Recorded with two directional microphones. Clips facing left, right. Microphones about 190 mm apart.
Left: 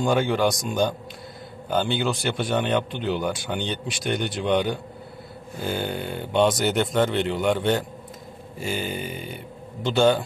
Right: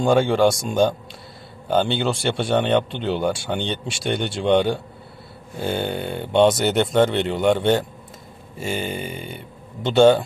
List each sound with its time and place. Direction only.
0.0 s speech: 25° right (ahead or behind)
1.9 s speech: 25° right (ahead or behind)